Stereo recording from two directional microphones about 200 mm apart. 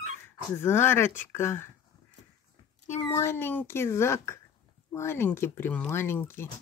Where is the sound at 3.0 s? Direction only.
15° left (ahead or behind).